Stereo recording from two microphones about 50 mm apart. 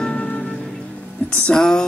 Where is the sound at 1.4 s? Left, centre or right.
Centre.